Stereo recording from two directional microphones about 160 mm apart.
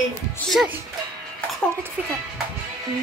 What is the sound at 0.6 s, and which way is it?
Speech, 5° right (ahead or behind).